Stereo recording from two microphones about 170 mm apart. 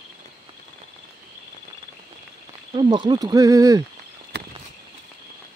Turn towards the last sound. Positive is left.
turn(degrees=-20)  # may be behind; listen again after turning